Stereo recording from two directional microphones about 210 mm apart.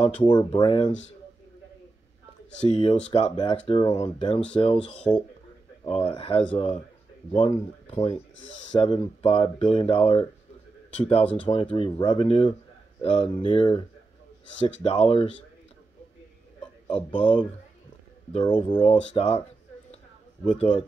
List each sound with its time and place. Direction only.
0.3 s speech: 20° left (ahead or behind)
2.7 s speech: 25° left (ahead or behind)
5.9 s speech: 25° left (ahead or behind)
16.8 s speech: 25° left (ahead or behind)
20.4 s a man's voice: 35° left (ahead or behind)